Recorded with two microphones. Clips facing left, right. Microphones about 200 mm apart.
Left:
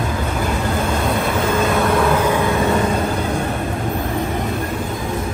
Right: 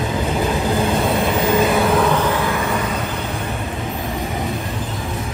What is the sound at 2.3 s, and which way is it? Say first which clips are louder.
Vehicle: left 2 dB; 15° left (ahead or behind).